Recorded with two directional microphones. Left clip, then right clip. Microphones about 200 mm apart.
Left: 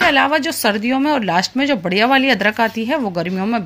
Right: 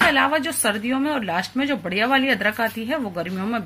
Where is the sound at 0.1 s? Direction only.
40° left (ahead or behind).